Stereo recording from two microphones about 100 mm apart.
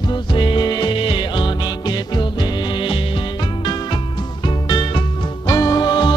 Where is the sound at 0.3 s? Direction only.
55° left (ahead or behind).